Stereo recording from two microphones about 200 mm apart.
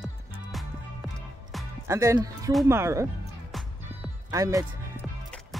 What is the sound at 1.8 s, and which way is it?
Speech, 15° right (ahead or behind).